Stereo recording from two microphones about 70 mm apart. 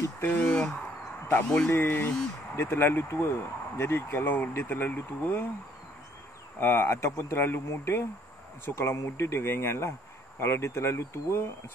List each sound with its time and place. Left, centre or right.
0.2 s speech: left
0.5 s a sound: centre
1.7 s speech: left
6.6 s speech: left